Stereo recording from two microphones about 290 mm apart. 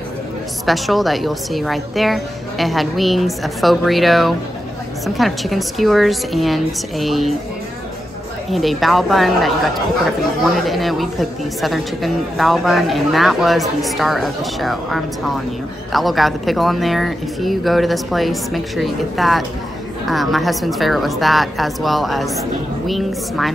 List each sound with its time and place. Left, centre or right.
0.7 s speech: centre
8.5 s speech: centre